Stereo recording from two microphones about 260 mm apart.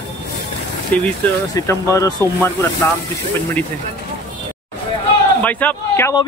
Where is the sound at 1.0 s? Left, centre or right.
Centre.